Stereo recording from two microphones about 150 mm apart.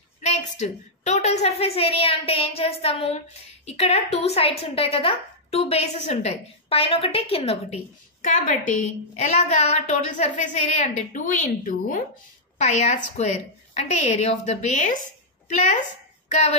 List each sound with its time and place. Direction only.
0.2 s a woman's voice: 50° left (ahead or behind)
8.2 s a woman's voice: 60° left (ahead or behind)
16.3 s a sound: 55° left (ahead or behind)